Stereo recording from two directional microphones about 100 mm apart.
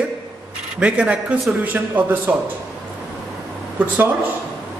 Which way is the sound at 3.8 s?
15° right (ahead or behind).